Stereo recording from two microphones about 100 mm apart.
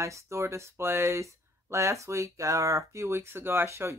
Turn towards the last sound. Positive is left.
turn(degrees=-25)  # may be behind; listen again after turning